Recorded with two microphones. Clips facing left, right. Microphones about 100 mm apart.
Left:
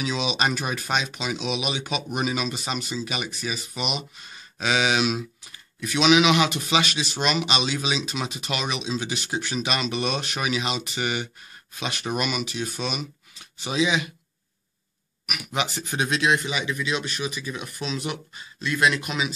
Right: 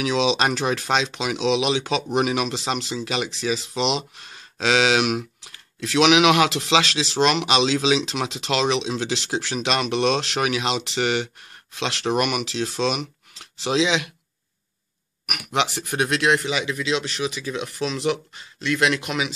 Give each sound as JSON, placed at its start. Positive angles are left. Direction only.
{"t": 0.0, "sound": "speech", "side_deg": -85}
{"t": 2.1, "sound": "speech", "side_deg": -70}
{"t": 15.2, "sound": "speech", "side_deg": -60}